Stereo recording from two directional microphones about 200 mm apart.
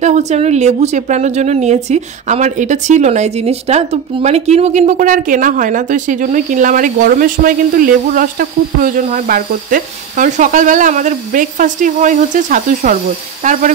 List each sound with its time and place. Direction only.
0.0 s a woman's voice: 35° right (ahead or behind)